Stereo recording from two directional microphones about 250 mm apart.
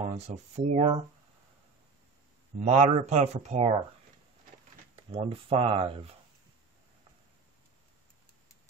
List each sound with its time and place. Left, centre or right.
0.2 s speech: right
2.6 s speech: right
5.1 s speech: right